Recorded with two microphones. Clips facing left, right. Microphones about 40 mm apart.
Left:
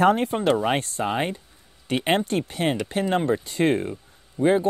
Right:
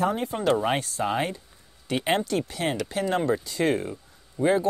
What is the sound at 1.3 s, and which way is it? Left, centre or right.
Speech, left.